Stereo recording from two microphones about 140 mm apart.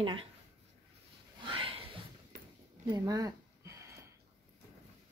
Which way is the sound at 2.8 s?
25° right (ahead or behind).